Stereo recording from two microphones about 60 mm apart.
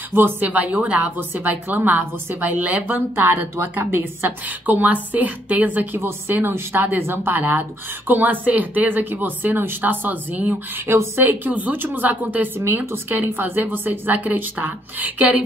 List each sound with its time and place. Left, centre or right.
0.1 s a woman's voice: right
5.9 s a woman's voice: right
7.3 s a woman's voice: right
10.9 s a woman's voice: right
11.5 s a woman's voice: right
12.5 s a woman's voice: right